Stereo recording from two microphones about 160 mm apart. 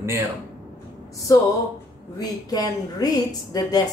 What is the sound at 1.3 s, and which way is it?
A woman's voice, 20° left (ahead or behind).